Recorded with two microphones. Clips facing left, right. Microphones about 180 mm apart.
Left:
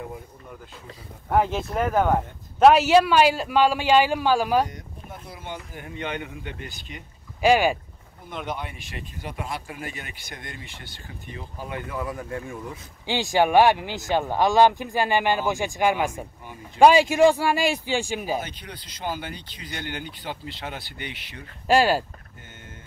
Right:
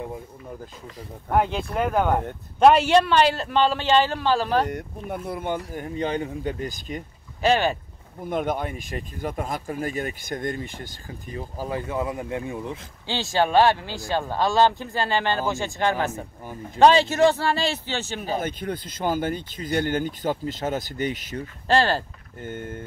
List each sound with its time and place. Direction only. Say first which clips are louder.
1.3 s speech: even; centre (ahead or behind)
4.6 s speech: right 10 dB; 65° right (ahead or behind)
5.6 s speech: right 6 dB; 40° right (ahead or behind)
7.4 s speech: left 2 dB; 10° left (ahead or behind)
8.3 s speech: right 7 dB; 50° right (ahead or behind)
12.0 s speech: right 3 dB; 20° right (ahead or behind)
13.0 s speech: left 2 dB; 15° left (ahead or behind)
18.4 s speech: right 8 dB; 50° right (ahead or behind)
21.6 s speech: left 2 dB; 10° left (ahead or behind)
22.4 s speech: right 15 dB; 55° right (ahead or behind)